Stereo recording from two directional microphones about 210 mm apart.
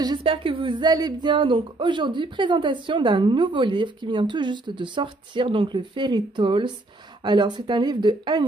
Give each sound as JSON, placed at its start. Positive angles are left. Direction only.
{"t": 0.0, "sound": "speech", "side_deg": -20}